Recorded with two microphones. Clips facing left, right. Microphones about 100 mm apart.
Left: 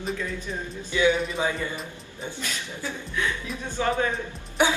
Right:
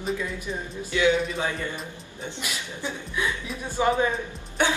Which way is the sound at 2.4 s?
15° right (ahead or behind).